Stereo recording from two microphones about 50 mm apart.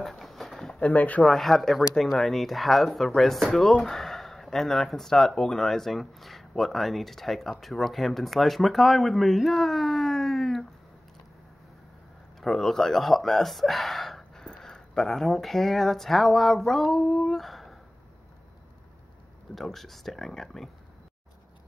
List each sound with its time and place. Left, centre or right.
0.0 s a sound: centre
0.8 s speech: left
1.2 s speech: centre
12.4 s speech: centre
14.4 s speech: centre
19.5 s speech: centre